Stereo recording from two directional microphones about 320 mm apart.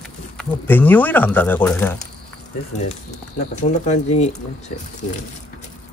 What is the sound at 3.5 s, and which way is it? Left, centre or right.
Speech, left.